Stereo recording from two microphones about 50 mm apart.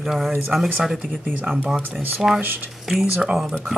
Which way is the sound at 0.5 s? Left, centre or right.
Right.